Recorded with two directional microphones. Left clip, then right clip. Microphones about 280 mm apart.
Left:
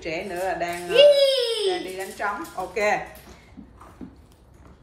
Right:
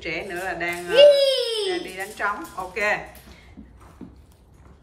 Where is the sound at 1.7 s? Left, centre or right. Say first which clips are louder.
Even; centre.